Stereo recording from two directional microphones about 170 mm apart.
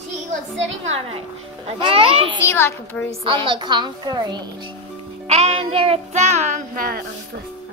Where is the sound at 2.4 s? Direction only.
15° left (ahead or behind).